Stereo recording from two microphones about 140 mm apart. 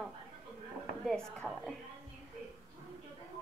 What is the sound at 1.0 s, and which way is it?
Speech, centre (ahead or behind).